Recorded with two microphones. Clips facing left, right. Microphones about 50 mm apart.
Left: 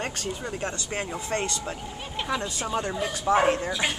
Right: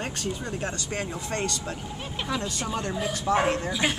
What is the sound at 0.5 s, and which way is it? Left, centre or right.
Speech, left.